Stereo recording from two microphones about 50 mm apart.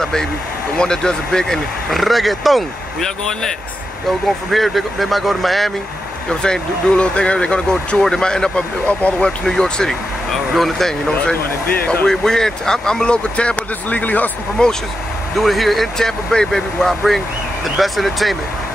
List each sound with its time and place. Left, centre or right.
0.0 s speech: centre
3.0 s speech: centre
4.5 s speech: centre
6.4 s speech: centre
8.8 s speech: left
9.5 s speech: centre
10.3 s speech: centre
12.1 s speech: centre
13.8 s speech: left
14.6 s speech: centre
15.3 s speech: centre